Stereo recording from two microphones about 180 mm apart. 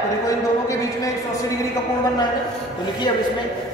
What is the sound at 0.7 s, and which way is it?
Speech, 20° left (ahead or behind).